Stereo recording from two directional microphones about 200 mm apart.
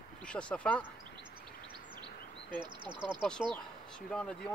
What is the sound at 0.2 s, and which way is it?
Speech, 5° left (ahead or behind).